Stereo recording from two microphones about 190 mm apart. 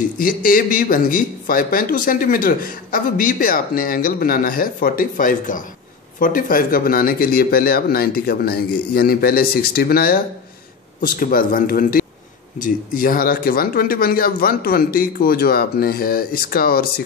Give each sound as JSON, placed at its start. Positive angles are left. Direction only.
{"t": 0.2, "sound": "a man's voice", "side_deg": 50}